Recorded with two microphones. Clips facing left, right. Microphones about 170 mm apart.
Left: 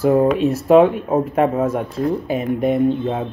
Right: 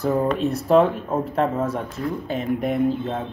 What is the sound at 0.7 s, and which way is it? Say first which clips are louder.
Speech: left 4 dB; 70° left (ahead or behind).